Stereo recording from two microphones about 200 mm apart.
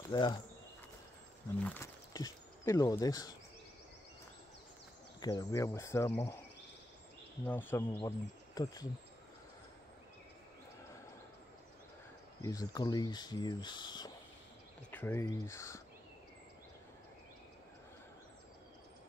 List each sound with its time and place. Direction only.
0.1 s speech: 20° left (ahead or behind)
1.6 s speech: 10° left (ahead or behind)
5.2 s speech: 20° left (ahead or behind)
7.4 s speech: 10° left (ahead or behind)
12.4 s speech: 15° left (ahead or behind)
14.9 s speech: 10° left (ahead or behind)